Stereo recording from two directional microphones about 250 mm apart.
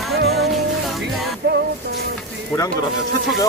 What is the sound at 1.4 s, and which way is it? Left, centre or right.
Music, right.